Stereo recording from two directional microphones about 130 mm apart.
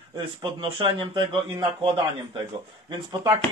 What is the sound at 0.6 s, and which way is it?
A man's voice, 40° right (ahead or behind).